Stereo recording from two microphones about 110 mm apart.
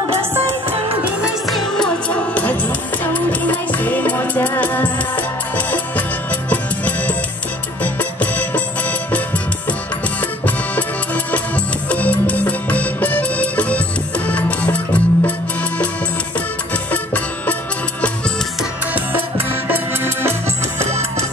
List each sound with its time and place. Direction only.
0.2 s music: 25° right (ahead or behind)
1.4 s music: centre (ahead or behind)
2.0 s music: 15° left (ahead or behind)
10.4 s accordion: 15° left (ahead or behind)
11.3 s music: 15° left (ahead or behind)
16.9 s music: 15° left (ahead or behind)
19.7 s music: 20° right (ahead or behind)
20.8 s music: 70° right (ahead or behind)